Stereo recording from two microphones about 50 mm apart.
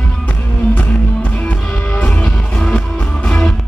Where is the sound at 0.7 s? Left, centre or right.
Left; by 3.6 s centre.